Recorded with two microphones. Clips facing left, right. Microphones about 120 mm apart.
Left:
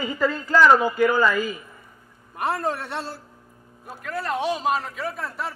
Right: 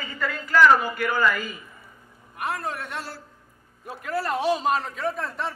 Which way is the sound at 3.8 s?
Centre (ahead or behind).